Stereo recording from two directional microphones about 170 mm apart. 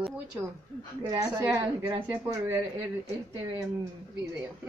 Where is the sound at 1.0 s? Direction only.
25° right (ahead or behind).